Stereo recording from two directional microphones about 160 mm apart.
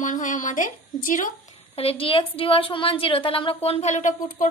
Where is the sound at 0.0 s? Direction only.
55° left (ahead or behind).